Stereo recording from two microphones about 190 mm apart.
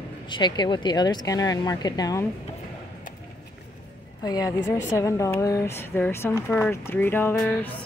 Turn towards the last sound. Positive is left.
turn(degrees=10)  # may be behind; listen again after turning